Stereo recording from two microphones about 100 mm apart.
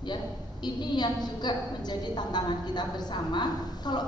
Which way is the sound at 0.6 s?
45° left (ahead or behind).